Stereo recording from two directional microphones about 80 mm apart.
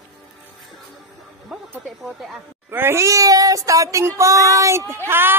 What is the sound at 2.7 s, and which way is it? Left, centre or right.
A woman's voice, right.